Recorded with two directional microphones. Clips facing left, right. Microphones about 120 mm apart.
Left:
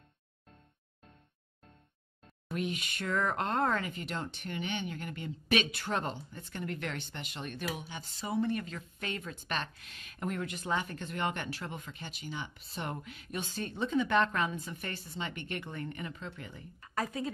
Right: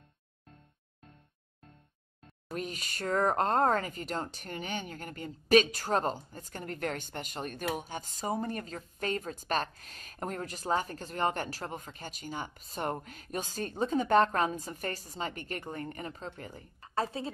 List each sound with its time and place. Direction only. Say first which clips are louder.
2.5 s speech: left 2 dB; 40° right (ahead or behind)